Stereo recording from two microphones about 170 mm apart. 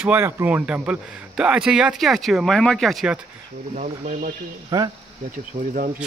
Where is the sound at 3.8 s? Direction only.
45° right (ahead or behind).